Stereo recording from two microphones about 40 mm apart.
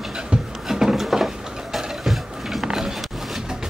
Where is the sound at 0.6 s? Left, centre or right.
Centre.